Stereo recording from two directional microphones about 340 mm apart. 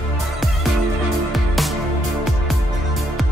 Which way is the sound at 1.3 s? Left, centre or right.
Centre.